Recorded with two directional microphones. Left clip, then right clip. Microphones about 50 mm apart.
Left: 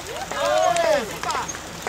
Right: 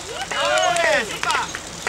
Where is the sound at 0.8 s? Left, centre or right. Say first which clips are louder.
Right 2 dB; right.